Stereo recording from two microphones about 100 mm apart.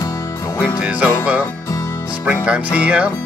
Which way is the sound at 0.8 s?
10° right (ahead or behind).